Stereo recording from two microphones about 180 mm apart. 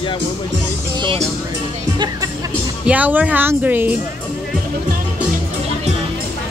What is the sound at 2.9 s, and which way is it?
Speech, 10° right (ahead or behind).